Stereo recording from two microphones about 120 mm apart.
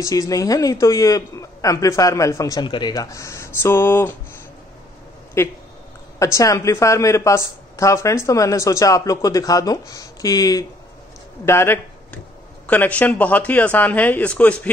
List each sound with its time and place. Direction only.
0.0 s a woman's voice: 30° left (ahead or behind)
5.4 s a woman's voice: 20° left (ahead or behind)